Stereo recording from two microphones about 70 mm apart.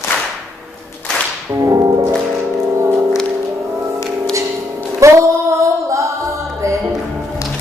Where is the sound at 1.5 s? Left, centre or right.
Right.